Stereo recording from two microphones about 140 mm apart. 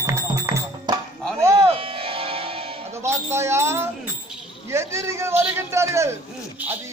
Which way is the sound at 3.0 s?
20° right (ahead or behind).